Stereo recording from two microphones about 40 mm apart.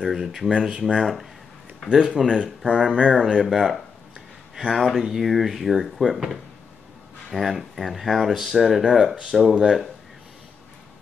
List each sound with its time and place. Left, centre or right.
0.0 s speech: centre
0.6 s speech: right
1.9 s speech: centre
3.3 s speech: centre
7.2 s speech: centre